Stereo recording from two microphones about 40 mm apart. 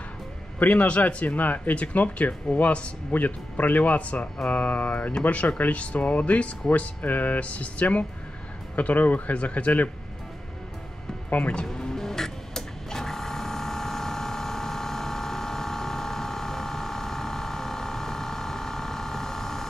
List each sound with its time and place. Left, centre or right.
0.6 s speech: left
7.1 s speech: left
11.2 s speech: left
11.6 s mechanisms: centre